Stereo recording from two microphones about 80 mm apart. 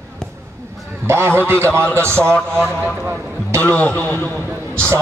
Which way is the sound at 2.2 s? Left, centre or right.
Centre.